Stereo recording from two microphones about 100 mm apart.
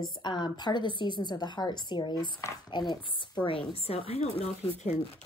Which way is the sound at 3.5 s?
75° left (ahead or behind).